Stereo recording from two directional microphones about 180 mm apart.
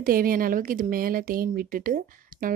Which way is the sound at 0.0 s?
55° right (ahead or behind).